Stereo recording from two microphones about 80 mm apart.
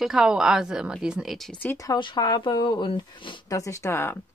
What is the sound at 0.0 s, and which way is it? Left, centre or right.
Speech, centre.